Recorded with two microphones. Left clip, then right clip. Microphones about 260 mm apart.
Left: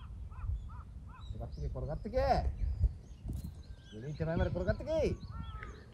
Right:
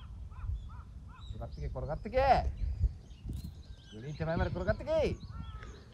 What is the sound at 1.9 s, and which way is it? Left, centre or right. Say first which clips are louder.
Speech: right 5 dB; centre.